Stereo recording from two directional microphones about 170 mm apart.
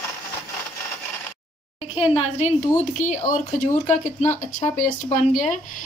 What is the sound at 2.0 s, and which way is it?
A woman's voice, 35° left (ahead or behind).